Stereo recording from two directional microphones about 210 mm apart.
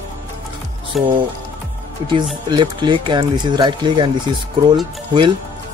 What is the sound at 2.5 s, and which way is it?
Speech, 20° right (ahead or behind).